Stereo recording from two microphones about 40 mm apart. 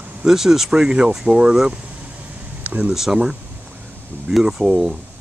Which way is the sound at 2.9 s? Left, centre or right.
Centre.